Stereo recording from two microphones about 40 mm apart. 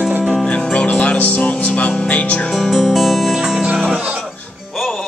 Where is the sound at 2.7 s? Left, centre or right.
Centre.